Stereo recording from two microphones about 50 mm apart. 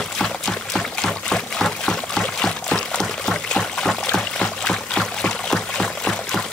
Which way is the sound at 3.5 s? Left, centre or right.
Centre.